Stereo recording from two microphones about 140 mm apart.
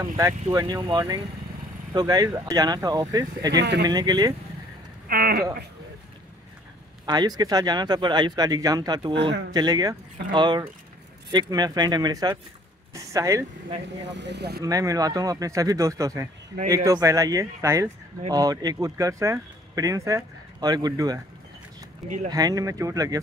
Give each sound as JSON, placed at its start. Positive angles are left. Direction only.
{"t": 0.5, "sound": "speech", "side_deg": -25}
{"t": 5.0, "sound": "speech", "side_deg": -90}
{"t": 7.1, "sound": "speech", "side_deg": -30}
{"t": 14.6, "sound": "speech", "side_deg": -25}
{"t": 22.3, "sound": "speech", "side_deg": -25}